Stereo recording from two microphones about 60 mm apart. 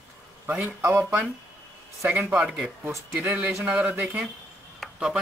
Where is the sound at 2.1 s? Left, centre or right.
Right.